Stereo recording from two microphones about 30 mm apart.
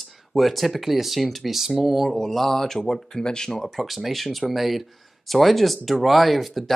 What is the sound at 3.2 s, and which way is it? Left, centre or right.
Speech, left.